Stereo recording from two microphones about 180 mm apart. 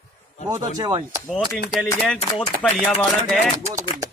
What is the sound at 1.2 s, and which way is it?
A man's voice, 5° left (ahead or behind).